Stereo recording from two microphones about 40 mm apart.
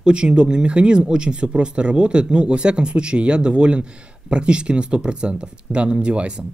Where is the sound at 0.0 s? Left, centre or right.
Right.